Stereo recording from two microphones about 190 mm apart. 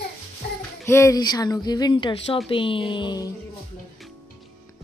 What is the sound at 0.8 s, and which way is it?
Speech, 15° left (ahead or behind).